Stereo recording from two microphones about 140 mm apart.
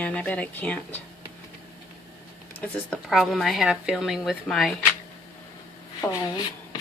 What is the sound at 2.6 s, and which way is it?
Speech, 5° left (ahead or behind).